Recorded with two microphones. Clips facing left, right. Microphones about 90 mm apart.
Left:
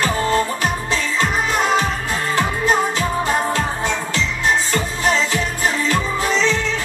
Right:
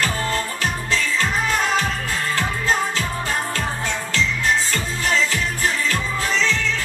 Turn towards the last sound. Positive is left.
turn(degrees=20)  # may be behind; listen again after turning